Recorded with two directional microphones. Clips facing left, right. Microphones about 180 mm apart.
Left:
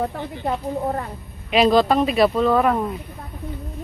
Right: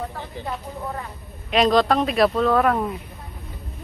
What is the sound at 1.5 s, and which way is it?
Speech, centre (ahead or behind).